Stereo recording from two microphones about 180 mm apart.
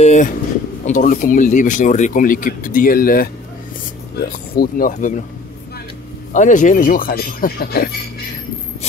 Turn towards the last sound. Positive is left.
turn(degrees=55)  # may be behind; listen again after turning